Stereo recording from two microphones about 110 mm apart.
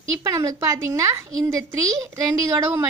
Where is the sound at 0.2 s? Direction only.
35° right (ahead or behind).